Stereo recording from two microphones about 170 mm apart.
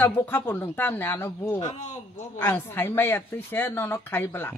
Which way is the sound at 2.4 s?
15° left (ahead or behind).